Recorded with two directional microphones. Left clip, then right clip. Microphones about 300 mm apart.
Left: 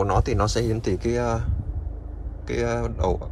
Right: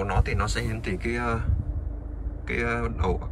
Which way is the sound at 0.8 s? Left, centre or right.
Centre.